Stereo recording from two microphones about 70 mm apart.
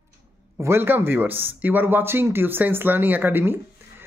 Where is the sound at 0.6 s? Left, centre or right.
Right.